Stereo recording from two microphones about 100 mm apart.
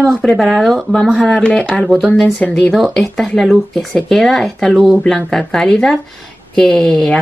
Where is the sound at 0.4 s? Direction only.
5° left (ahead or behind).